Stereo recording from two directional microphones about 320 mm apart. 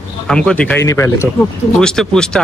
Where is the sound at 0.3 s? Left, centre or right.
Centre.